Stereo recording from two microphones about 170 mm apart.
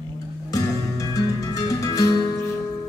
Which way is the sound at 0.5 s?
20° left (ahead or behind).